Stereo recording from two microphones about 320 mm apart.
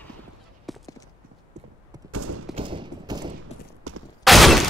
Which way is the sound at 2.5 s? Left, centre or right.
Centre.